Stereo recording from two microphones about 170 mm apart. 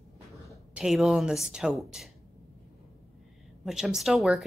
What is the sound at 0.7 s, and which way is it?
Speech, centre (ahead or behind).